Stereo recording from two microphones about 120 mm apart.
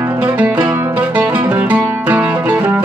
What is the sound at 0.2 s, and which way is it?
Music, 10° right (ahead or behind).